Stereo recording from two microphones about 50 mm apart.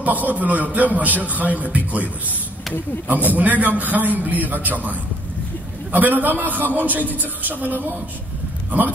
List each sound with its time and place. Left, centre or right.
0.0 s a man's voice: right
3.1 s a man's voice: right